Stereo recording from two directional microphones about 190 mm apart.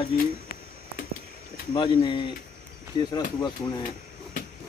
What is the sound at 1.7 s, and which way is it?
Speech, 25° left (ahead or behind).